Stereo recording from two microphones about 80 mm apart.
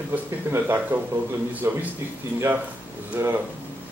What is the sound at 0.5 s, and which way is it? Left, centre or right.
A man's voice, right.